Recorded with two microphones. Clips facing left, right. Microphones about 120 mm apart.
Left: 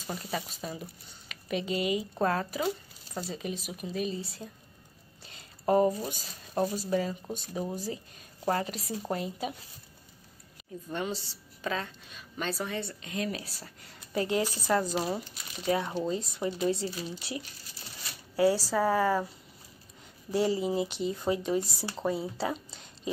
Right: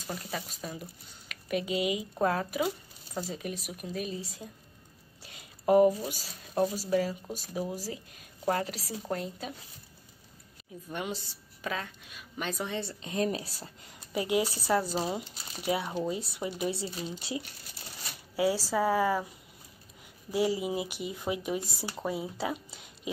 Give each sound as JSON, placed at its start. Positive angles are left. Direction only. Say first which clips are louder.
{"t": 0.0, "sound": "a woman's voice", "louder": "left 2 dB", "side_deg": 5}
{"t": 5.2, "sound": "a sound", "louder": "even", "side_deg": -10}
{"t": 6.0, "sound": "a woman's voice", "louder": "even", "side_deg": -10}
{"t": 10.9, "sound": "a woman's voice", "louder": "left 2 dB", "side_deg": -10}
{"t": 13.0, "sound": "speech", "louder": "right 4 dB", "side_deg": -35}
{"t": 14.1, "sound": "a woman's voice", "louder": "even", "side_deg": -15}
{"t": 18.3, "sound": "a woman's voice", "louder": "left 3 dB", "side_deg": -10}
{"t": 20.2, "sound": "a woman's voice", "louder": "left 1 dB", "side_deg": -10}